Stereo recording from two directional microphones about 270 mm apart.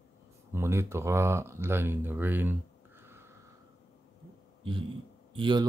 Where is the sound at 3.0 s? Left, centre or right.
Centre.